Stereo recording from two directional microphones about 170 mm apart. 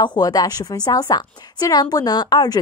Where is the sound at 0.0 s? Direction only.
25° left (ahead or behind).